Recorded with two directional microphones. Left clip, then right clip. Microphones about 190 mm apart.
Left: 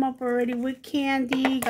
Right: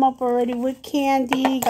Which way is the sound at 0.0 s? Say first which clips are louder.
Right 6 dB; 10° left (ahead or behind).